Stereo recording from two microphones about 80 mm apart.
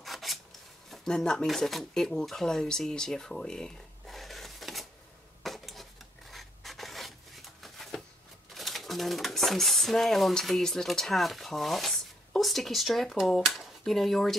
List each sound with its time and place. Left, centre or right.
0.0 s filing: centre
0.8 s speech: centre
5.4 s dishes: centre
6.3 s rub: centre
8.5 s speech: centre